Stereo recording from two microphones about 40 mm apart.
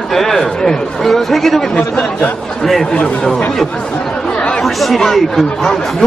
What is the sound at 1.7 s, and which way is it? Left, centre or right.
Speech, left.